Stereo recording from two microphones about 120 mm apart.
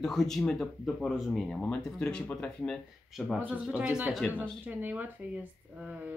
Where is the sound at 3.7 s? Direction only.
10° right (ahead or behind).